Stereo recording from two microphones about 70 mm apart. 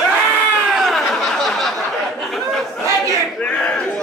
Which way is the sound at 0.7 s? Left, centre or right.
Centre.